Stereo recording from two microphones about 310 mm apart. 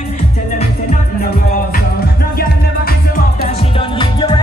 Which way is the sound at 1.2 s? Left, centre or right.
Left.